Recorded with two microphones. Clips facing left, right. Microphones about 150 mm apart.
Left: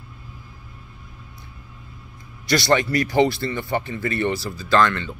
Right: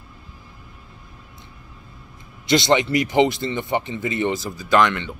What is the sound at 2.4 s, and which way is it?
Speech, 20° right (ahead or behind).